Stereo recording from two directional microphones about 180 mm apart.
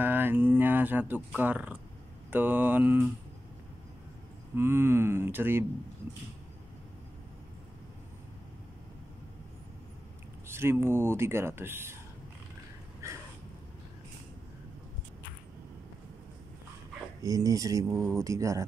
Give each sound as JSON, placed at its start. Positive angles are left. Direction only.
{"t": 0.0, "sound": "speech", "side_deg": -10}
{"t": 4.6, "sound": "speech", "side_deg": -15}
{"t": 10.5, "sound": "speech", "side_deg": -15}
{"t": 13.0, "sound": "a sound", "side_deg": -15}
{"t": 17.2, "sound": "speech", "side_deg": -20}